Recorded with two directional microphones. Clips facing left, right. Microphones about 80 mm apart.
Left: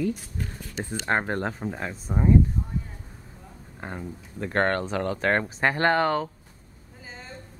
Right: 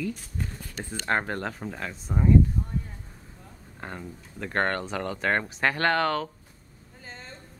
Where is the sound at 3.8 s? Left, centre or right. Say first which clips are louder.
Left 2 dB; centre.